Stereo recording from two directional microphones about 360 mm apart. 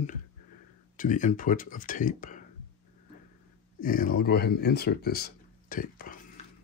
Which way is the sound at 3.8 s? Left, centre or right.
Left.